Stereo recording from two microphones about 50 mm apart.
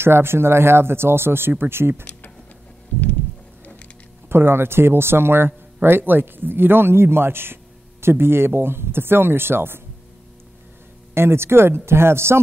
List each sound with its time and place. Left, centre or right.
0.0 s speech: right
4.3 s speech: right
11.1 s speech: right